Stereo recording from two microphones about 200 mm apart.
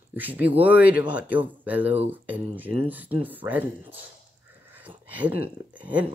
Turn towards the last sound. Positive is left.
turn(degrees=-5)  # may be behind; listen again after turning